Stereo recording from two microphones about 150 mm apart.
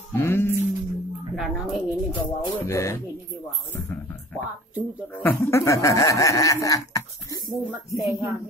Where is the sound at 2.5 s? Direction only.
15° left (ahead or behind).